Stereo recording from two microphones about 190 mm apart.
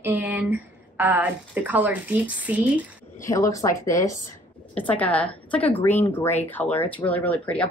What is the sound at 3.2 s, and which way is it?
A woman's voice, 15° left (ahead or behind).